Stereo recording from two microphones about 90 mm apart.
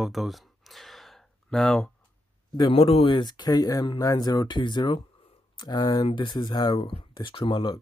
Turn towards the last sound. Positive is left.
turn(degrees=55)  # may be behind; listen again after turning